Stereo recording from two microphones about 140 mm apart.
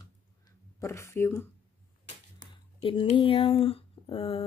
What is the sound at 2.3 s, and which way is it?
Speech, 40° left (ahead or behind).